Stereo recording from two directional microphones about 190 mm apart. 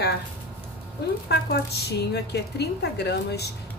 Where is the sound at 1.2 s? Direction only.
60° left (ahead or behind).